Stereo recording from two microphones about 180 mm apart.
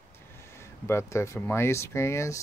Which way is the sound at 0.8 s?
15° left (ahead or behind).